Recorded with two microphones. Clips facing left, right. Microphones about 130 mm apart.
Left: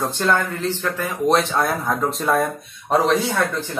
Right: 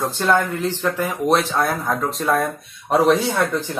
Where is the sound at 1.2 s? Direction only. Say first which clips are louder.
Left 1 dB; centre (ahead or behind).